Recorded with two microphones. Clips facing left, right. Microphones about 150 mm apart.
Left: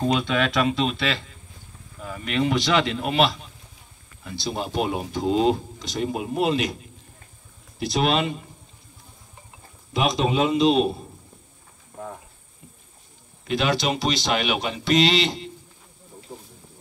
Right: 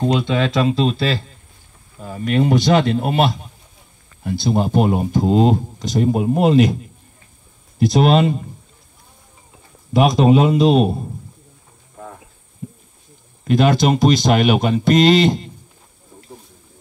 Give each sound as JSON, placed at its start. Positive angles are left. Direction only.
{"t": 0.2, "sound": "speech", "side_deg": -30}
{"t": 4.4, "sound": "speech", "side_deg": -50}
{"t": 7.8, "sound": "speech", "side_deg": -45}
{"t": 9.9, "sound": "speech", "side_deg": -45}
{"t": 12.6, "sound": "a sound", "side_deg": -50}
{"t": 13.4, "sound": "speech", "side_deg": -45}